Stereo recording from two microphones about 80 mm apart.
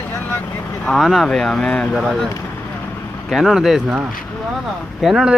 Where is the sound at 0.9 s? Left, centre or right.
Centre.